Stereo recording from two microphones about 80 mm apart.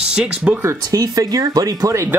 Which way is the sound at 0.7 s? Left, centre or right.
Right.